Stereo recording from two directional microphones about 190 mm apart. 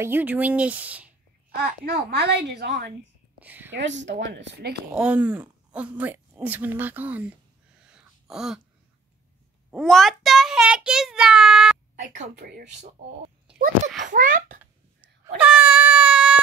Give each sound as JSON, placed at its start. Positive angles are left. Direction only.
{"t": 0.0, "sound": "speech", "side_deg": -10}
{"t": 1.5, "sound": "speech", "side_deg": -55}
{"t": 3.3, "sound": "a woman's voice", "side_deg": -10}
{"t": 3.7, "sound": "a woman's voice", "side_deg": -70}
{"t": 4.9, "sound": "speech", "side_deg": -5}
{"t": 7.8, "sound": "gasp", "side_deg": -5}
{"t": 9.7, "sound": "child singing", "side_deg": 0}
{"t": 12.0, "sound": "a woman's voice", "side_deg": -45}
{"t": 14.0, "sound": "a woman's voice", "side_deg": -45}
{"t": 14.6, "sound": "a sound", "side_deg": -5}